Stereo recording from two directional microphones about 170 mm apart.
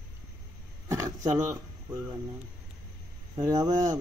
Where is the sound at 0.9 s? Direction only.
15° right (ahead or behind).